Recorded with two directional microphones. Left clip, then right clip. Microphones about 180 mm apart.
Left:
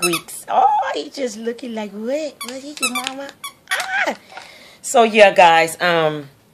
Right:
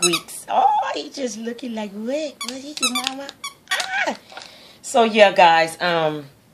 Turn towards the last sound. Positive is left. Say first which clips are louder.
# left 3 dB
turn(degrees=35)  # may be behind; listen again after turning